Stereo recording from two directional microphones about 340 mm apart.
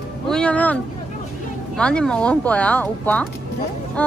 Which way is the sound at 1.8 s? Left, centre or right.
Centre.